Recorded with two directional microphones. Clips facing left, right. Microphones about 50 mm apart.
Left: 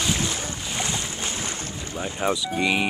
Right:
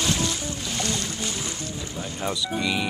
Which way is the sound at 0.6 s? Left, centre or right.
Centre.